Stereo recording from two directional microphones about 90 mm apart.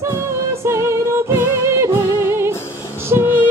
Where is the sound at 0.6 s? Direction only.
30° right (ahead or behind).